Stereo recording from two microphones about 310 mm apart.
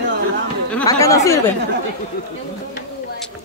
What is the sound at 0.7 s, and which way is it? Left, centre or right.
Speech, centre.